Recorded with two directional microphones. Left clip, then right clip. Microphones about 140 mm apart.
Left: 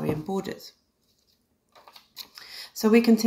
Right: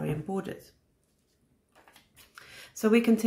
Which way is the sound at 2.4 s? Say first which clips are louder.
Left 3 dB; 20° right (ahead or behind).